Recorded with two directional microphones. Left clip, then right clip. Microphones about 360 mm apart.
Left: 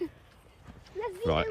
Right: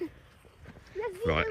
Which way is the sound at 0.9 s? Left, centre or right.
Centre.